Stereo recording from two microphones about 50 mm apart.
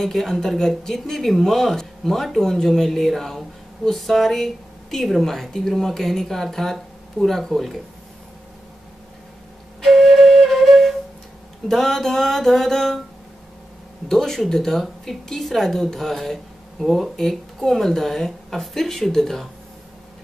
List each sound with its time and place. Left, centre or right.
0.0 s speech: centre
9.8 s flute: centre
11.7 s speech: centre
14.0 s a woman's voice: centre